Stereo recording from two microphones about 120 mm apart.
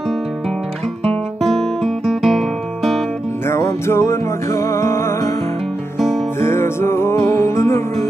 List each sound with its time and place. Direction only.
1.4 s music: centre (ahead or behind)
3.4 s music: 25° left (ahead or behind)
6.4 s music: 20° left (ahead or behind)